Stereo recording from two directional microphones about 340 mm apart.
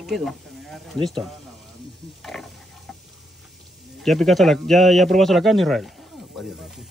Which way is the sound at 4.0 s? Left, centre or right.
Centre.